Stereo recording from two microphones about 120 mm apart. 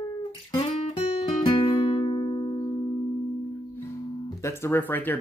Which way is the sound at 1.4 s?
45° left (ahead or behind).